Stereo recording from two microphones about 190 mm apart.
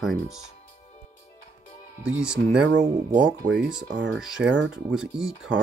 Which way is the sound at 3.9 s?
70° right (ahead or behind).